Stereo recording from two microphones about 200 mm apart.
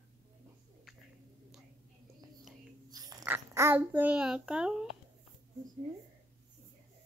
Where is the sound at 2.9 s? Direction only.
20° right (ahead or behind).